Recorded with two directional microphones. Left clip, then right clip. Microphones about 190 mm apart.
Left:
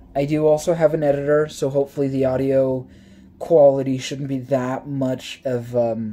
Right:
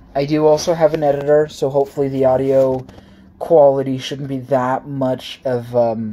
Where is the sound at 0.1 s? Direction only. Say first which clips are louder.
Right 4 dB; centre (ahead or behind).